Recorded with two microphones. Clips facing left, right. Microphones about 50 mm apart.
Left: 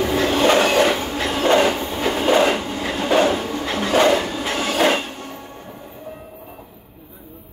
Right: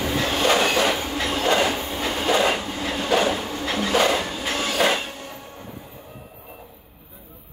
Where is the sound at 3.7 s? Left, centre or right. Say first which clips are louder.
Left 4 dB; left.